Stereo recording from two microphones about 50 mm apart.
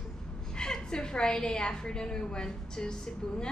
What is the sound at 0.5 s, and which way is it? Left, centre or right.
A woman's voice, centre.